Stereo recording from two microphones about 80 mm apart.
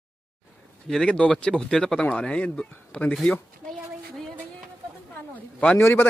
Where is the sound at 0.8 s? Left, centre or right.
Centre.